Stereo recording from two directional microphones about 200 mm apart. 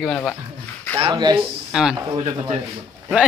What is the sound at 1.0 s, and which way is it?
Speech, 20° right (ahead or behind).